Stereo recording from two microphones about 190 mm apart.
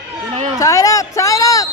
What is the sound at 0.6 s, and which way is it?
Speech, 15° left (ahead or behind).